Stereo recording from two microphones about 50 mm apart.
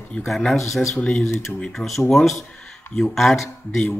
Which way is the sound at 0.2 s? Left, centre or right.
Left.